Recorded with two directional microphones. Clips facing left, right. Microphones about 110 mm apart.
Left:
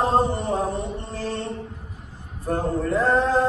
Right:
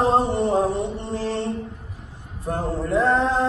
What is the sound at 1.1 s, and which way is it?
Mantra, 25° right (ahead or behind).